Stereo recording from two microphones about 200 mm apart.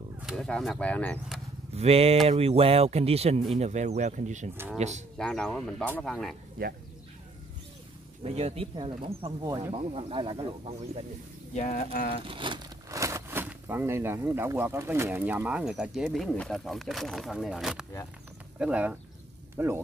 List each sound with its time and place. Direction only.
0.2 s speech: centre (ahead or behind)
1.8 s speech: 30° right (ahead or behind)
5.1 s speech: 5° left (ahead or behind)
6.6 s speech: 45° right (ahead or behind)
8.2 s speech: 30° right (ahead or behind)
11.5 s speech: 40° left (ahead or behind)
12.3 s speech: 25° right (ahead or behind)